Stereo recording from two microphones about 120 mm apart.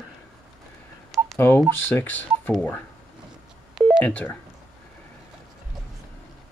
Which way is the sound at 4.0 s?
10° left (ahead or behind).